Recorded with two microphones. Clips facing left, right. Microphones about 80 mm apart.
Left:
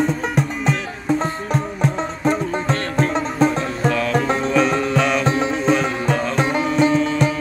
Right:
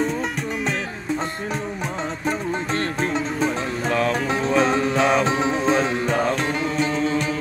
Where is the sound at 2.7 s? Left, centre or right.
Left.